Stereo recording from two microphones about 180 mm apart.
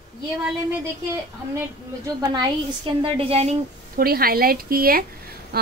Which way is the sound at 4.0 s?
55° right (ahead or behind).